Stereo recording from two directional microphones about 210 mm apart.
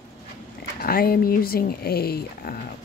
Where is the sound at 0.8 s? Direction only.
45° left (ahead or behind).